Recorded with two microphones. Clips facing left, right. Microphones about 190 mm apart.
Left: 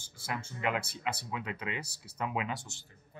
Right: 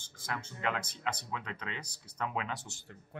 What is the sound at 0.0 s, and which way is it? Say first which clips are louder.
Speech: left 1 dB; 10° left (ahead or behind).